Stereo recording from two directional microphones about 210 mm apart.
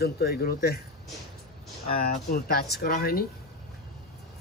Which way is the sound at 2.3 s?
45° left (ahead or behind).